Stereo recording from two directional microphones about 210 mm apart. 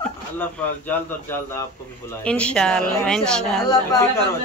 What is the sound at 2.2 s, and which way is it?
Speech, 5° left (ahead or behind).